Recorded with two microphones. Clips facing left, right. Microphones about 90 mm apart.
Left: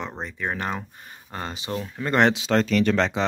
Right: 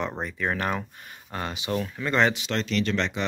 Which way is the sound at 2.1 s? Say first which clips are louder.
Left 3 dB; 60° left (ahead or behind).